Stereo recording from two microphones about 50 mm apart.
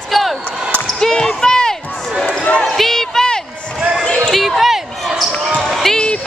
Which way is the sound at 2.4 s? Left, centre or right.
Left.